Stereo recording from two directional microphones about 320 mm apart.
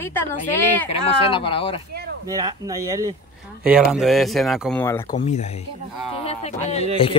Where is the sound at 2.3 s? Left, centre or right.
Centre.